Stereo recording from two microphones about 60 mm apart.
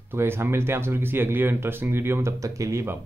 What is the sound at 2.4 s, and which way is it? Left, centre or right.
Speech, right.